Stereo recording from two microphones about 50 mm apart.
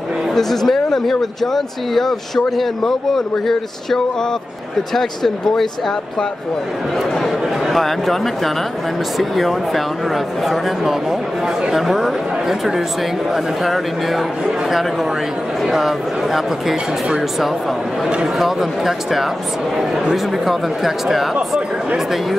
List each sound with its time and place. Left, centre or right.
0.3 s speech: centre
7.6 s speech: centre
9.2 s speech: centre
21.4 s speech: centre